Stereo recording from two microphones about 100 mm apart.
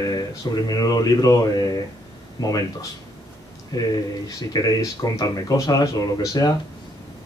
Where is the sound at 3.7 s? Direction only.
40° left (ahead or behind).